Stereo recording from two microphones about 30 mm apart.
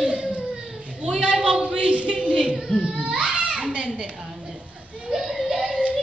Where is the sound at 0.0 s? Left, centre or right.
Right.